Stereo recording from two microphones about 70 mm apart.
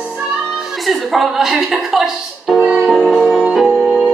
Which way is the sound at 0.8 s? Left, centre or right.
Centre.